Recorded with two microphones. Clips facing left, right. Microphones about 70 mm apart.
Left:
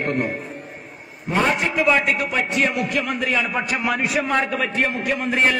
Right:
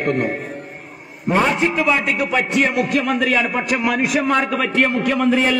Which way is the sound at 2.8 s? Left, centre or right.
Right.